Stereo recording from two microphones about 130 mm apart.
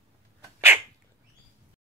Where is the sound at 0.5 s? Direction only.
20° right (ahead or behind).